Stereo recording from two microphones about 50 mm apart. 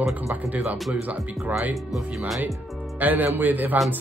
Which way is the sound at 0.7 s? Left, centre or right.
Centre.